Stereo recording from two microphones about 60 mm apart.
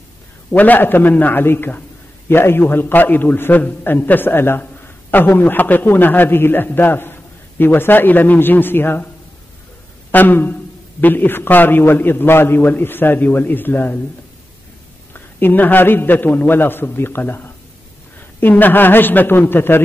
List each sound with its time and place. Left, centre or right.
0.6 s a man's voice: left
10.1 s a man's voice: left
15.1 s a man's voice: left